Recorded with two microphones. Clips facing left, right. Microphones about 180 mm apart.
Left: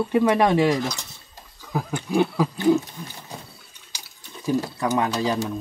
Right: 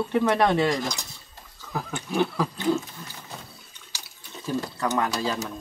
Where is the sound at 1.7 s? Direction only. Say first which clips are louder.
Left 4 dB; 15° left (ahead or behind).